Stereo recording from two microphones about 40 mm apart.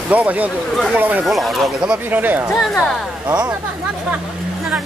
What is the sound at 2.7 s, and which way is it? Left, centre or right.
Speech, centre.